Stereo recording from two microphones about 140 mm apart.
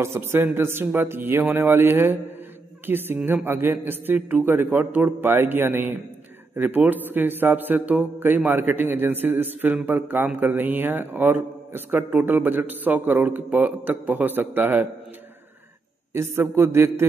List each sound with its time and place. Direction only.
0.0 s a man's voice: 15° right (ahead or behind)
16.1 s a man's voice: 15° right (ahead or behind)